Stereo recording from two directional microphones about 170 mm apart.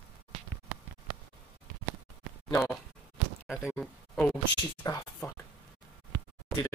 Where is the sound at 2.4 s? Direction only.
15° left (ahead or behind).